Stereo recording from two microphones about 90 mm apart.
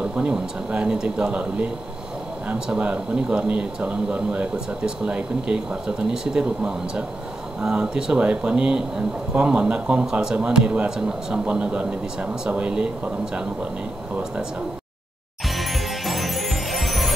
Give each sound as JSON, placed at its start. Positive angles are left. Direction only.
{"t": 0.0, "sound": "speech", "side_deg": -10}
{"t": 15.5, "sound": "music", "side_deg": 0}